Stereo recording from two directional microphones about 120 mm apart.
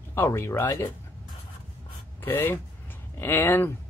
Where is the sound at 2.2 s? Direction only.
20° left (ahead or behind).